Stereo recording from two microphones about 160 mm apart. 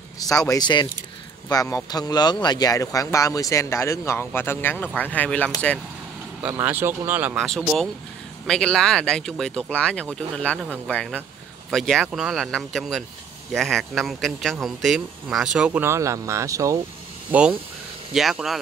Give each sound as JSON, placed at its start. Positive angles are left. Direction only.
{"t": 0.5, "sound": "speech", "side_deg": 25}
{"t": 6.4, "sound": "speech", "side_deg": -10}
{"t": 7.3, "sound": "speech", "side_deg": 0}
{"t": 17.3, "sound": "speech", "side_deg": -10}